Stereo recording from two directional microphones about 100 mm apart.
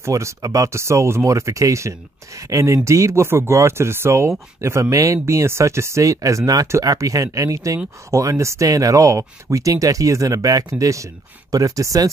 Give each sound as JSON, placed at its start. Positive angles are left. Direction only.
{"t": 0.0, "sound": "speech", "side_deg": -30}